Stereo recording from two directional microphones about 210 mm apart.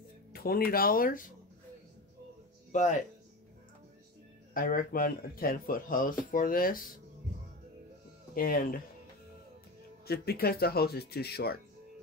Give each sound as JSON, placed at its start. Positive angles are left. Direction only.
{"t": 0.3, "sound": "speech", "side_deg": 45}
{"t": 2.7, "sound": "speech", "side_deg": 35}
{"t": 4.6, "sound": "speech", "side_deg": 40}
{"t": 8.4, "sound": "speech", "side_deg": 45}
{"t": 10.0, "sound": "speech", "side_deg": 50}